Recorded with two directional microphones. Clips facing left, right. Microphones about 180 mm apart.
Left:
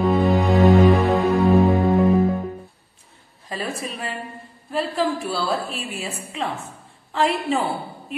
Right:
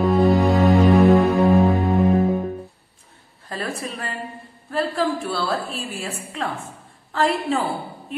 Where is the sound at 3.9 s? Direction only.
Centre (ahead or behind).